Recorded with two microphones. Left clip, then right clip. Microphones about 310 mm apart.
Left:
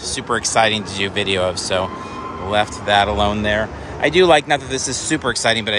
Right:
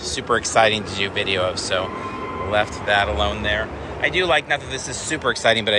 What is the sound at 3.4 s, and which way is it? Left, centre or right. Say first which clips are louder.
Speech: left 3 dB; left.